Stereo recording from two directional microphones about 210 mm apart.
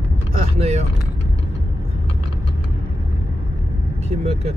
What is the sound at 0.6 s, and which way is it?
Speech, 30° right (ahead or behind).